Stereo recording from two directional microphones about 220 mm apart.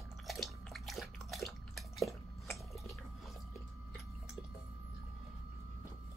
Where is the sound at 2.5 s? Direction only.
Centre (ahead or behind).